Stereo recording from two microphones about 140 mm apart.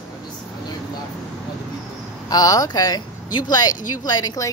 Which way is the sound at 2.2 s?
25° left (ahead or behind).